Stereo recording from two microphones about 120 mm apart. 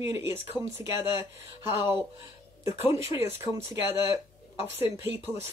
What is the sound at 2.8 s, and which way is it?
Speech, 60° left (ahead or behind).